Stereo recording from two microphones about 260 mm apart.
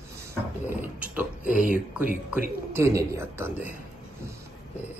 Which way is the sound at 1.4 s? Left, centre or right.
Left.